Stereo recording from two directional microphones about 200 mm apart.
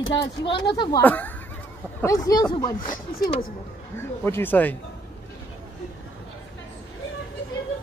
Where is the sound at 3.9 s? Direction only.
10° left (ahead or behind).